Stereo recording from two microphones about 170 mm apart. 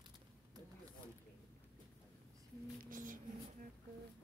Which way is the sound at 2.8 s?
50° right (ahead or behind).